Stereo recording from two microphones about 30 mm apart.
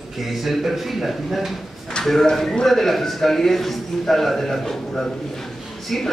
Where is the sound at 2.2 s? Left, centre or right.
Centre.